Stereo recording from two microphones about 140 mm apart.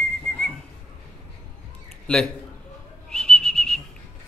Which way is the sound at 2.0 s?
5° left (ahead or behind).